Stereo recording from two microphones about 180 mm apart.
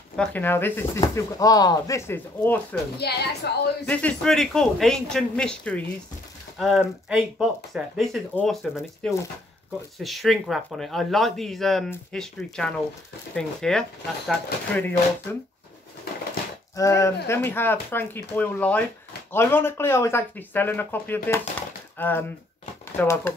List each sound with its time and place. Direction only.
0.1 s speech: 5° left (ahead or behind)
3.0 s a woman's voice: 65° left (ahead or behind)
3.8 s speech: 5° left (ahead or behind)
16.7 s speech: 20° left (ahead or behind)